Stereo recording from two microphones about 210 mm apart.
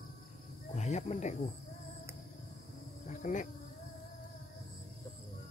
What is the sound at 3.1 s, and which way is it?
Insect, 35° left (ahead or behind).